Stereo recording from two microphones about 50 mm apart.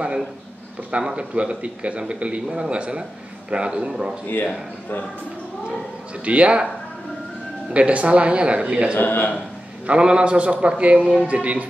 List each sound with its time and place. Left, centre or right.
0.9 s a man's voice: right
6.2 s a man's voice: right
7.7 s a man's voice: right
8.9 s a man's voice: left
9.8 s a man's voice: centre